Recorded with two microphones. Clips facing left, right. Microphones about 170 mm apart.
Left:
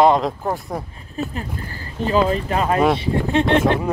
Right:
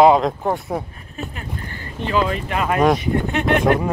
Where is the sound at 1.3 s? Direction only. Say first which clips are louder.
Left 2 dB; 35° left (ahead or behind).